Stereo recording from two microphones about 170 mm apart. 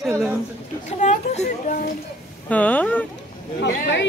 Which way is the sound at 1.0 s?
40° left (ahead or behind).